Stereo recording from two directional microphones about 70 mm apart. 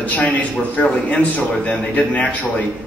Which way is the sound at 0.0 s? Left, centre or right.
Left.